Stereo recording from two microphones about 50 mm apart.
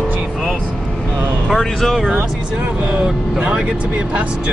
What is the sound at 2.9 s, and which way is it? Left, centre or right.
Speech, centre.